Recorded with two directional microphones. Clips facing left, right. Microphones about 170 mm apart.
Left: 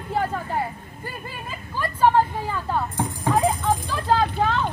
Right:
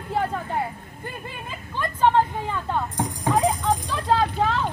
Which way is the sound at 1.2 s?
5° left (ahead or behind).